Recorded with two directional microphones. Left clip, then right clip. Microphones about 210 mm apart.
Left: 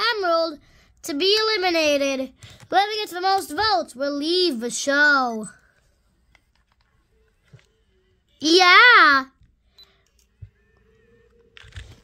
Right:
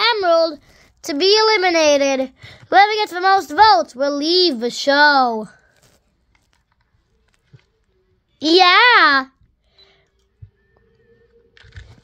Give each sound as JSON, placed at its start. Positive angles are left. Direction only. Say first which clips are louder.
{"t": 0.0, "sound": "a woman's voice", "louder": "right 6 dB", "side_deg": 10}
{"t": 8.4, "sound": "a child's voice", "louder": "right 2 dB", "side_deg": 20}
{"t": 9.8, "sound": "a sound", "louder": "right 1 dB", "side_deg": 10}
{"t": 11.5, "sound": "computer keyboard", "louder": "left 1 dB", "side_deg": 25}